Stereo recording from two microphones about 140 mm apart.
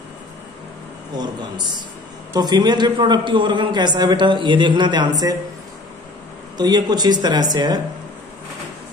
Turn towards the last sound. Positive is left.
turn(degrees=-30)  # may be behind; listen again after turning